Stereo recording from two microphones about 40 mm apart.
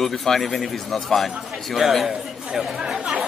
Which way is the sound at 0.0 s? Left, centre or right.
Centre.